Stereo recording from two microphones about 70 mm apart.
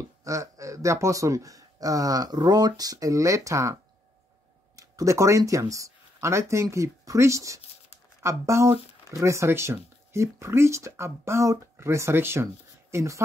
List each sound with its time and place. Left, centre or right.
0.2 s speech: right
4.7 s speech: right